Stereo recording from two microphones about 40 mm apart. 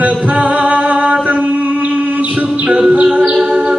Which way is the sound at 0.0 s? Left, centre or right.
Right.